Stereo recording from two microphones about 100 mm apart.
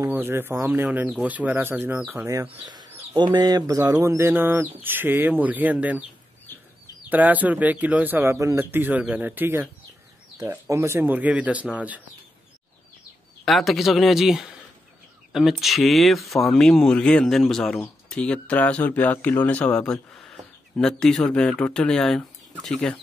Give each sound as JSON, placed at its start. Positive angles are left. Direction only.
{"t": 0.0, "sound": "speech", "side_deg": -20}
{"t": 2.6, "sound": "speech", "side_deg": -45}
{"t": 7.1, "sound": "speech", "side_deg": -15}
{"t": 13.5, "sound": "speech", "side_deg": 0}